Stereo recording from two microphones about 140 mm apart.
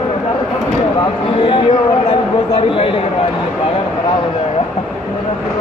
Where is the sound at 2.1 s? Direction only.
40° left (ahead or behind).